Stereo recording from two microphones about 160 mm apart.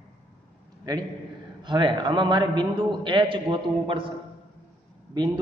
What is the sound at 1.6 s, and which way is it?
A man's voice, 30° right (ahead or behind).